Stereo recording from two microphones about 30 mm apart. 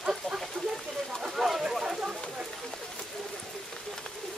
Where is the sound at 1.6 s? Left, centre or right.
Right.